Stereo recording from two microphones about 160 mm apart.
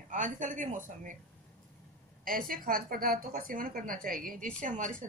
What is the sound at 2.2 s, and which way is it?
A woman's voice, 60° right (ahead or behind).